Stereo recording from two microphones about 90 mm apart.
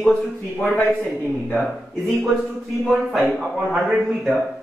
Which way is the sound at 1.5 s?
Centre (ahead or behind).